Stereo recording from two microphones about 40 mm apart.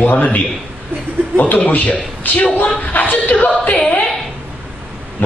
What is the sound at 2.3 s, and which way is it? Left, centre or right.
Speech, left.